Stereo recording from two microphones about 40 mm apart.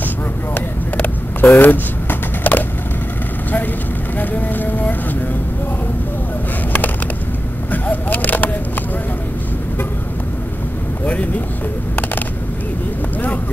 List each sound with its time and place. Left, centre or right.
0.6 s vehicle: left
1.4 s a sound: left
4.2 s vehicle: left
7.7 s vehicle: left
11.1 s vehicle: left